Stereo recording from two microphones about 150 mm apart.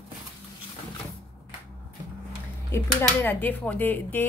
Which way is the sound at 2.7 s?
15° left (ahead or behind).